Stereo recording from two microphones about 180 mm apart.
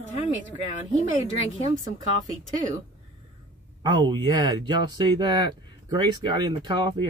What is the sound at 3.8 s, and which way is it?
Speech, 25° right (ahead or behind).